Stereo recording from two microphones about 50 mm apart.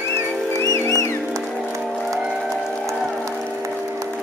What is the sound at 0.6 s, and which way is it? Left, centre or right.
Music, left.